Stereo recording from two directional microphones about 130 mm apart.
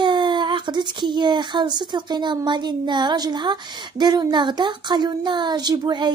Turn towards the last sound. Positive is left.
turn(degrees=-35)  # may be behind; listen again after turning